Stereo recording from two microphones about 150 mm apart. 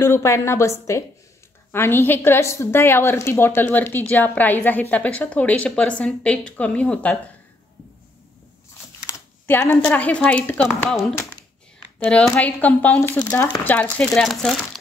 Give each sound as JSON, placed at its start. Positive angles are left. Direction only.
{"t": 0.0, "sound": "a woman's voice", "side_deg": 20}
{"t": 9.5, "sound": "a woman's voice", "side_deg": 15}
{"t": 12.0, "sound": "a woman's voice", "side_deg": 5}